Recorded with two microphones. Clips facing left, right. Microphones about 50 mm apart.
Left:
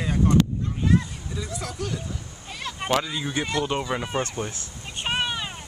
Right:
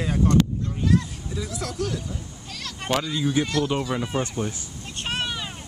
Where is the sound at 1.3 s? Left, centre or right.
Centre.